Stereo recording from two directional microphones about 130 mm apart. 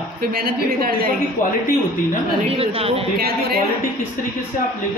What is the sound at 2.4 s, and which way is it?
Speech, 50° right (ahead or behind).